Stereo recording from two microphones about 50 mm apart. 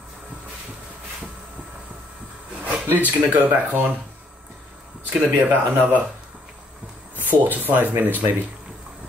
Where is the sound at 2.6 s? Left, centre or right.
Right.